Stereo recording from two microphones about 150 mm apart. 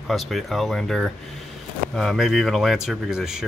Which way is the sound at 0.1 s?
Centre (ahead or behind).